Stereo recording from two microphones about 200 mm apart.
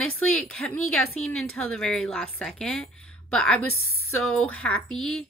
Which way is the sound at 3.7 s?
90° left.